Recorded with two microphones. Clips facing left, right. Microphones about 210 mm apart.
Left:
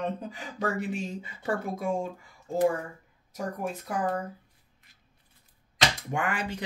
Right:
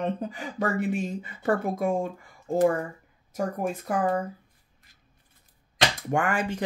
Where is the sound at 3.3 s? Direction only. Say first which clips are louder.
Right 4 dB; 50° right (ahead or behind).